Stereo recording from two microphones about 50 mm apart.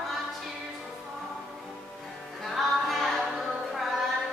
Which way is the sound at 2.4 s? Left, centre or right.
Centre.